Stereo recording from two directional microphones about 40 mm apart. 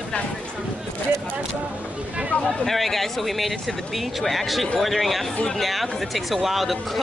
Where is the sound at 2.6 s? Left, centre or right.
Centre.